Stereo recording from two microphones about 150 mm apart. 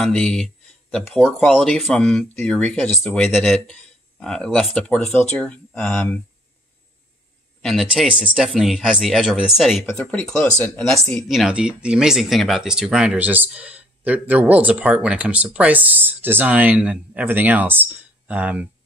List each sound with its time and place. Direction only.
0.0 s speech: 5° left (ahead or behind)
7.6 s speech: centre (ahead or behind)